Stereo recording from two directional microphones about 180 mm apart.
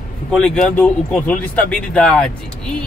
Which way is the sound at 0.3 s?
5° left (ahead or behind).